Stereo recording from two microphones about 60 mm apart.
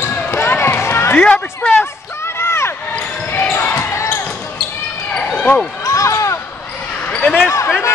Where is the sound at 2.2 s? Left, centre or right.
Left.